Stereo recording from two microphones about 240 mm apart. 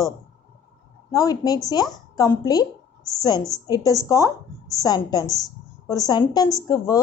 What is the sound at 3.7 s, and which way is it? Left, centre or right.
A woman's voice, centre.